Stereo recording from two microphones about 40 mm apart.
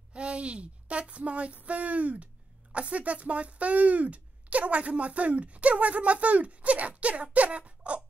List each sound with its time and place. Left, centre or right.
0.1 s speech: right